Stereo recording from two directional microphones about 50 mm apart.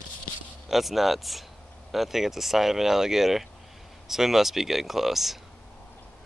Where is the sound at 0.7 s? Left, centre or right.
Centre.